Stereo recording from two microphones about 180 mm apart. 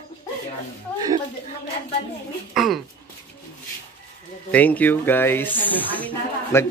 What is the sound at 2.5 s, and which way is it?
Speech, centre (ahead or behind).